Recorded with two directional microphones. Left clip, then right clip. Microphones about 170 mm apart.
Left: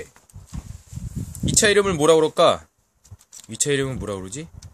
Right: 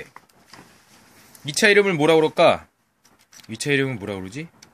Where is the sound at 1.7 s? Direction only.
15° left (ahead or behind).